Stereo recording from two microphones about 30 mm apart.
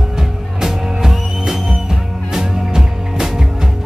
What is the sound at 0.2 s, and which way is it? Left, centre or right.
Music, centre.